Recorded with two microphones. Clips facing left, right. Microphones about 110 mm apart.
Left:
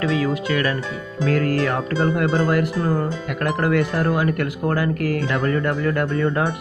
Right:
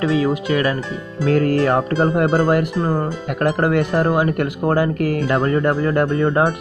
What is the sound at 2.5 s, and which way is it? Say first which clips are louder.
Music: right 2 dB; 15° right (ahead or behind).